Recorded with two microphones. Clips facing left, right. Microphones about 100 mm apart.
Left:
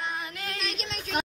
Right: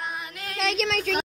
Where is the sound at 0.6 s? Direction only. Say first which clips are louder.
Right 10 dB; 90° right.